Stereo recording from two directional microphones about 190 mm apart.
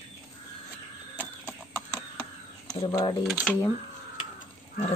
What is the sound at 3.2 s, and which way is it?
Speech, 5° right (ahead or behind).